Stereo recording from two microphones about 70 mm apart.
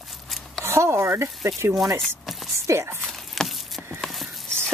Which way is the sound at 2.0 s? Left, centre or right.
Centre.